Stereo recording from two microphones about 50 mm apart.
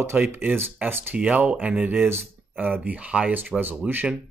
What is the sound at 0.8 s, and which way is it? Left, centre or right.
Speech, right.